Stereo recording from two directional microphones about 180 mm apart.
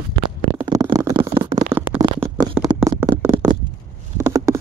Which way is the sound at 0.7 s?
20° right (ahead or behind).